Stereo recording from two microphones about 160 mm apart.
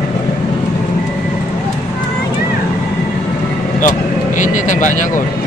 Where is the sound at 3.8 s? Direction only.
50° left (ahead or behind).